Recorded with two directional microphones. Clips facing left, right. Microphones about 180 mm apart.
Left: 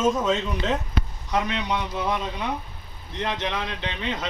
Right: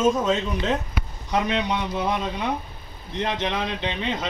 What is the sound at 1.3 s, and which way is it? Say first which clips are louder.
Speech: right 3 dB; 20° right (ahead or behind).